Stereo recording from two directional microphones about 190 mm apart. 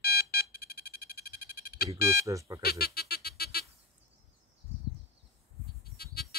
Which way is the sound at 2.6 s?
55° left (ahead or behind).